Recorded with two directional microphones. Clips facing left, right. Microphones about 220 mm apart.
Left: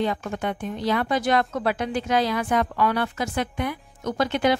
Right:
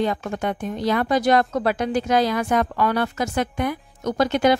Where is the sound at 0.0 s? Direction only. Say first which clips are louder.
Right 2 dB; 45° right (ahead or behind).